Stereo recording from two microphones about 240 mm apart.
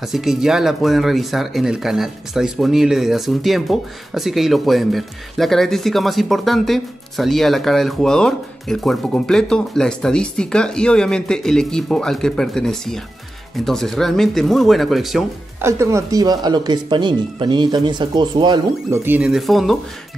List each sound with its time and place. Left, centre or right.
0.0 s speech: centre
15.8 s speech: centre